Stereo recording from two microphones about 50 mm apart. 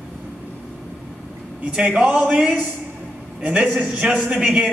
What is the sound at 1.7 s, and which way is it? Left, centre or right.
A man's voice, centre.